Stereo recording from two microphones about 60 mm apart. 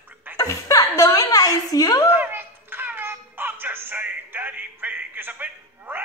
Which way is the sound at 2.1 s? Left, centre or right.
Right.